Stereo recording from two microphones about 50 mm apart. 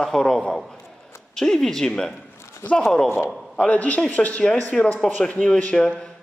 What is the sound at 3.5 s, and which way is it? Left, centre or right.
Speech, left.